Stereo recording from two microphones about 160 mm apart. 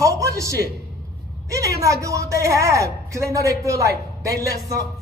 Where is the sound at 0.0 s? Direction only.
20° right (ahead or behind).